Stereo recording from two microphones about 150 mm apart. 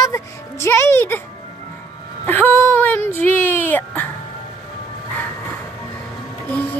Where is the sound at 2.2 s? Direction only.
15° left (ahead or behind).